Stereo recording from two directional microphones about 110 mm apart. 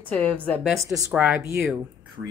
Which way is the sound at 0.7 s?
30° right (ahead or behind).